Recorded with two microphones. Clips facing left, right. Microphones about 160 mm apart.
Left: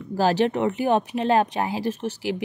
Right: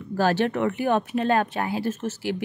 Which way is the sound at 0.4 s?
20° left (ahead or behind).